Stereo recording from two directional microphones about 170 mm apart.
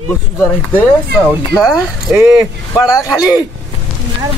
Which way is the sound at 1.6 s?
Centre (ahead or behind).